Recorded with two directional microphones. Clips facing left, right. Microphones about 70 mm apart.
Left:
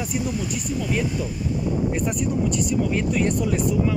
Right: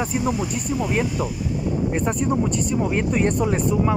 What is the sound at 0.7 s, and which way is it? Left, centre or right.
Speech, right.